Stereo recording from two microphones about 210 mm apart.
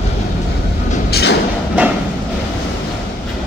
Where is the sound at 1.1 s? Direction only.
50° left (ahead or behind).